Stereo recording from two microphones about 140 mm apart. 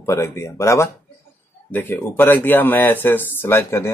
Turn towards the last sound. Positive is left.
turn(degrees=20)  # may be behind; listen again after turning